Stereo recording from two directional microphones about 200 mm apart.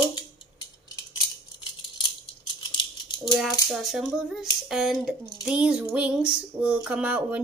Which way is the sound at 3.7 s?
Centre (ahead or behind).